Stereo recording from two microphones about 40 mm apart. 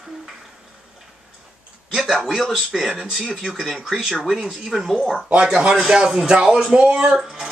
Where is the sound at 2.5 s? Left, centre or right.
Centre.